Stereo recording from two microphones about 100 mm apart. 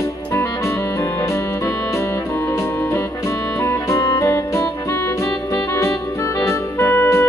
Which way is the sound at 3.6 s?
30° left (ahead or behind).